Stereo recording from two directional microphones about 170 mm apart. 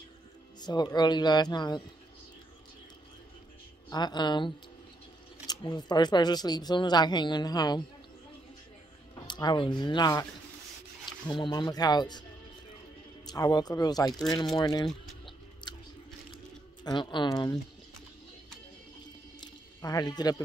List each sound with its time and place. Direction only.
0.6 s speech: 25° left (ahead or behind)
3.9 s speech: 25° left (ahead or behind)
9.3 s speech: 25° left (ahead or behind)
11.2 s speech: 25° left (ahead or behind)
15.6 s chewing: 25° left (ahead or behind)
16.8 s speech: 25° left (ahead or behind)
19.4 s a sound: 20° left (ahead or behind)